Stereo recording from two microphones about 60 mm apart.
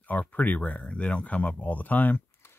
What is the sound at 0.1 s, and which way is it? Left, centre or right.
Speech, left.